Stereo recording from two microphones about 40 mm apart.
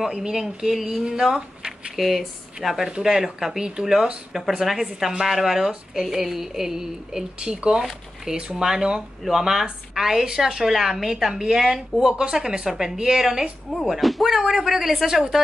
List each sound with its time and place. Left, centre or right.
0.0 s a woman's voice: centre